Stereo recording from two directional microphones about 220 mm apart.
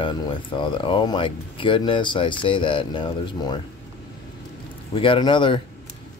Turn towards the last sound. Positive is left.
turn(degrees=20)  # may be behind; listen again after turning